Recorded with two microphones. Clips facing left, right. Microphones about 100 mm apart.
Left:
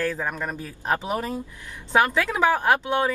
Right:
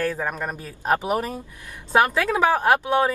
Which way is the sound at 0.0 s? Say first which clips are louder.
Right 1 dB; 20° right (ahead or behind).